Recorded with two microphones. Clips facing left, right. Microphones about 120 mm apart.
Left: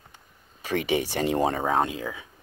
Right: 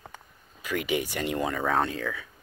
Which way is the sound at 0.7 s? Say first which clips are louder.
Left 3 dB; 35° left (ahead or behind).